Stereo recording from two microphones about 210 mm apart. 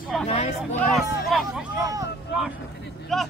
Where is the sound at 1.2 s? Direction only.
Centre (ahead or behind).